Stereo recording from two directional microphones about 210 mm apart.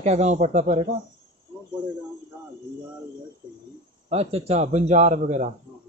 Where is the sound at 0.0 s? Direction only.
30° right (ahead or behind).